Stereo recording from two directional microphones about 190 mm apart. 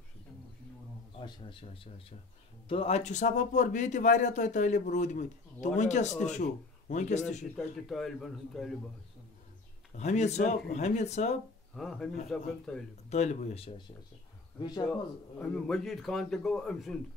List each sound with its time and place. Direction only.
1.2 s speech: 30° left (ahead or behind)
7.5 s a man's voice: centre (ahead or behind)
9.9 s speech: 35° left (ahead or behind)
11.7 s a man's voice: centre (ahead or behind)
13.1 s speech: 35° left (ahead or behind)
14.6 s speech: 25° left (ahead or behind)
14.9 s a man's voice: 5° left (ahead or behind)